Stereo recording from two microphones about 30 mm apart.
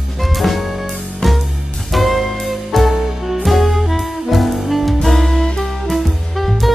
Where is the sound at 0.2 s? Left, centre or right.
Centre.